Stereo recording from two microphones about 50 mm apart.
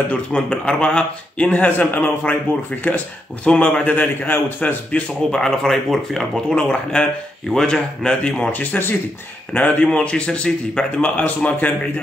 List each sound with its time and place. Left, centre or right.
0.1 s speech: centre
1.5 s a man's voice: left
5.3 s speech: centre
6.5 s speech: left
8.5 s a man's voice: left; by 10.9 s centre
11.0 s a man's voice: left